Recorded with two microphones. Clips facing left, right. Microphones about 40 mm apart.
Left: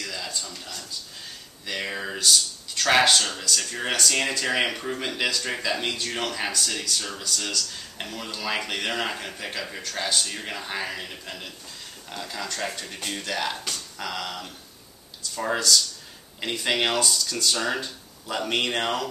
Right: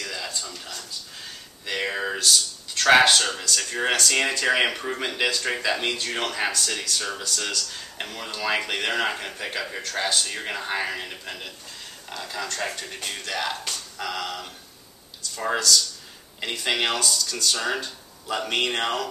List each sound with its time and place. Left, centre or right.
0.0 s a sound: centre
1.7 s speech: centre
2.1 s speech: centre
2.9 s speech: centre
6.5 s speech: centre
7.0 s speech: centre